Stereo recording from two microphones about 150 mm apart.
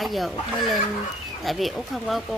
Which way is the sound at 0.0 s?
Centre (ahead or behind).